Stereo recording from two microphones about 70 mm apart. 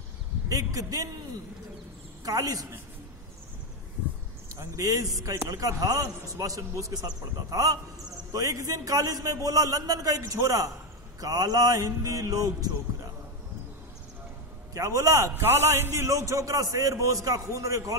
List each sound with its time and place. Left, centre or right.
0.5 s a man's voice: right
2.2 s a man's voice: right
4.5 s a man's voice: right
11.1 s a man's voice: right
14.7 s a man's voice: right
15.5 s a man's voice: right